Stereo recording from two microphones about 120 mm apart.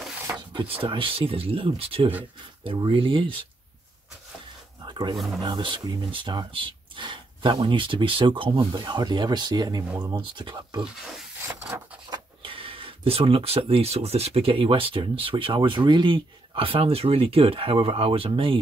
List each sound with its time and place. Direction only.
0.5 s speech: 45° right (ahead or behind)
4.8 s a sound: 40° right (ahead or behind)
5.4 s speech: 40° right (ahead or behind)
12.1 s speech: 45° right (ahead or behind)